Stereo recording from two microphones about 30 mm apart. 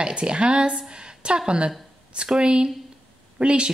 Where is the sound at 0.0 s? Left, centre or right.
Right.